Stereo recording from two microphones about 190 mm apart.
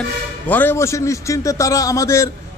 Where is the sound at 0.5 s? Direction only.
10° left (ahead or behind).